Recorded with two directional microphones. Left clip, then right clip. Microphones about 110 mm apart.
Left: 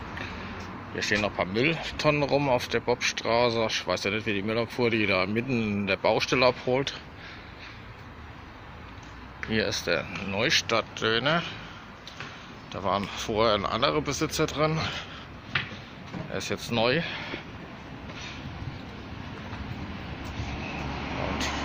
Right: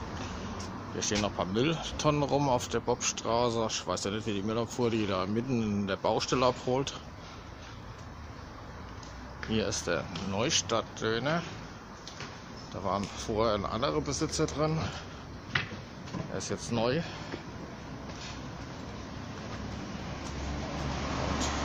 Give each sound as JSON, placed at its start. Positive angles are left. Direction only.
{"t": 0.9, "sound": "speech", "side_deg": 0}
{"t": 9.5, "sound": "speech", "side_deg": 5}
{"t": 10.8, "sound": "speech", "side_deg": 20}
{"t": 12.8, "sound": "speech", "side_deg": 20}
{"t": 16.3, "sound": "speech", "side_deg": 15}